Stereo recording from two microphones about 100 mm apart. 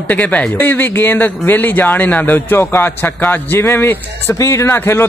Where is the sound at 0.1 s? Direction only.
15° left (ahead or behind).